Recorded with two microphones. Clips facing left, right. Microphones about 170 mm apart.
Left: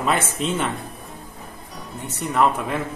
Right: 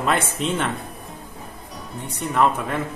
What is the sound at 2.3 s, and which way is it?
Speech, centre (ahead or behind).